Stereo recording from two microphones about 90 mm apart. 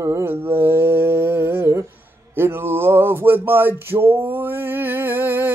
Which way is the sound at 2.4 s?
25° right (ahead or behind).